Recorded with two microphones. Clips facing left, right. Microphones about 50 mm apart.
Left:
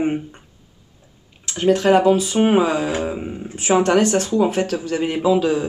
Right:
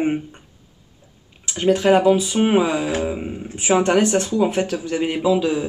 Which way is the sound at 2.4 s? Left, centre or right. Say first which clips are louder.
Left 1 dB; centre.